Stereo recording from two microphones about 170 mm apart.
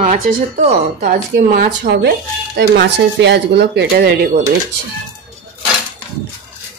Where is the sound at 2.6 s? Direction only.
80° right.